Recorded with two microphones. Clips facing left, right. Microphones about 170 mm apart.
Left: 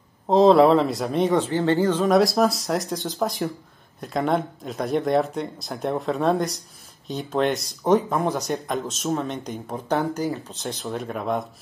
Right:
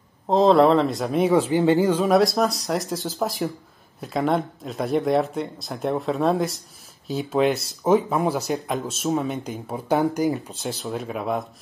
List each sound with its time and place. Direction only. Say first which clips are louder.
0.3 s speech: left 1 dB; centre (ahead or behind)
1.5 s speech: right 2 dB; 15° right (ahead or behind)
9.9 s speech: right 4 dB; 15° right (ahead or behind)
10.6 s speech: right 1 dB; centre (ahead or behind)